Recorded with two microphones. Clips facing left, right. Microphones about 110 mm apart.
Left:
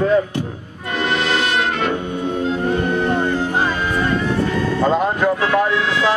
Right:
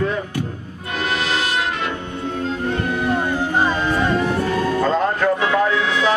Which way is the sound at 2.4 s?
5° right (ahead or behind).